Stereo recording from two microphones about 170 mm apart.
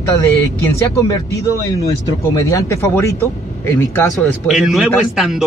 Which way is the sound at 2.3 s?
20° left (ahead or behind).